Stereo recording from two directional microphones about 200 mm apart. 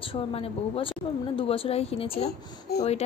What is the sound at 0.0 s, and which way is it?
A woman's voice, 30° left (ahead or behind).